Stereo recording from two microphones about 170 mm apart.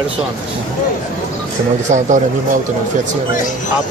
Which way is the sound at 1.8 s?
45° right (ahead or behind).